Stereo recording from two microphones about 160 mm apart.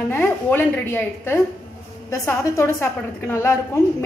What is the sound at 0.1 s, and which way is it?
A woman's voice, 15° left (ahead or behind).